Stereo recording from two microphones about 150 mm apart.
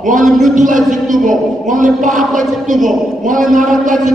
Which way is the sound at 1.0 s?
60° right (ahead or behind).